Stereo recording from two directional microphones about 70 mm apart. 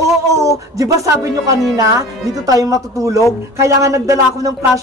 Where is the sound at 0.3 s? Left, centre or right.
Right.